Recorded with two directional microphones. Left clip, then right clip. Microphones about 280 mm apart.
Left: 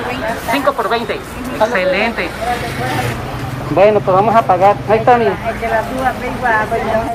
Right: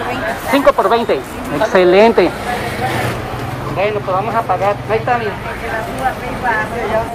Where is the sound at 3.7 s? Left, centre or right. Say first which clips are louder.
Left 7 dB; centre.